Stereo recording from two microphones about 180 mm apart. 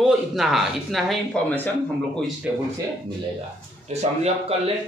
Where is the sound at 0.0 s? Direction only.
Centre (ahead or behind).